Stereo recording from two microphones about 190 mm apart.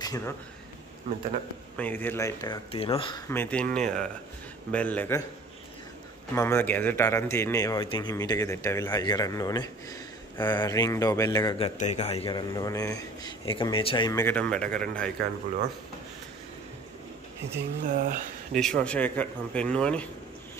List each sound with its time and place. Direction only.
0.0 s a sound: 20° left (ahead or behind)
1.8 s a man's voice: 10° left (ahead or behind); by 3.2 s 30° left (ahead or behind)
3.3 s speech: 10° left (ahead or behind)
6.3 s speech: 15° left (ahead or behind)
11.5 s a man's voice: 35° left (ahead or behind)
14.2 s speech: 5° left (ahead or behind)
17.8 s speech: 45° right (ahead or behind)
18.5 s speech: 5° left (ahead or behind)